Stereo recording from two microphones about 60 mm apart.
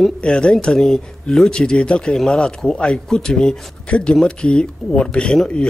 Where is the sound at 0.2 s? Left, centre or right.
Centre.